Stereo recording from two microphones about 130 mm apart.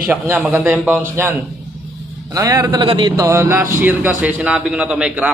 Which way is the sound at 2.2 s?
30° right (ahead or behind).